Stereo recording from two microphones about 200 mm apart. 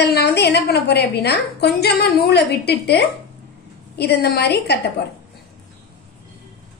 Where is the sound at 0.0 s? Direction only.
55° left (ahead or behind).